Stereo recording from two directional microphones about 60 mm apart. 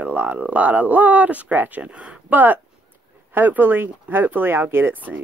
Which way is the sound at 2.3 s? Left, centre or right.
Right.